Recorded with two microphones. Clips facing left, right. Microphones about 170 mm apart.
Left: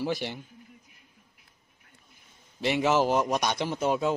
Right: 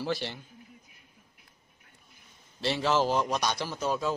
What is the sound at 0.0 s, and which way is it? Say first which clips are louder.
Speech: left 2 dB; 15° left (ahead or behind).